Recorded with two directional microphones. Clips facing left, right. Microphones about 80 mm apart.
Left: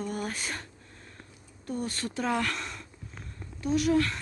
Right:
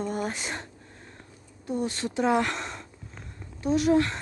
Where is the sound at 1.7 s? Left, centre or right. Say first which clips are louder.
Right 4 dB; right.